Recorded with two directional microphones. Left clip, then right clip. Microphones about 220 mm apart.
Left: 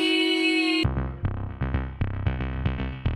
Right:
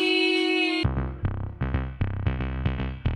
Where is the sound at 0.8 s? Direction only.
Centre (ahead or behind).